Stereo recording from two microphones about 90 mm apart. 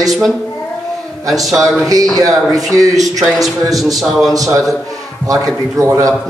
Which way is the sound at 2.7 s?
40° right (ahead or behind).